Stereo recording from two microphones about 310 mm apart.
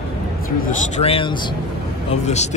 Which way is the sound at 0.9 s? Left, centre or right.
Centre.